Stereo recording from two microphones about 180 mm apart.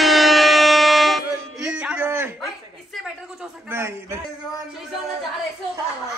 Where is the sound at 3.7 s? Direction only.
15° right (ahead or behind).